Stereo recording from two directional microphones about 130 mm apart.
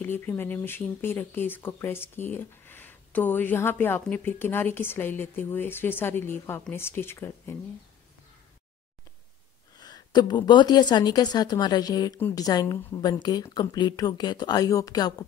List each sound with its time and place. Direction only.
0.0 s speech: 15° left (ahead or behind)
9.8 s a woman's voice: 30° left (ahead or behind)